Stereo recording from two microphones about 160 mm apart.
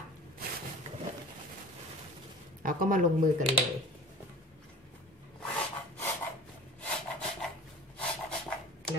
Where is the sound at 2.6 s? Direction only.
55° right (ahead or behind).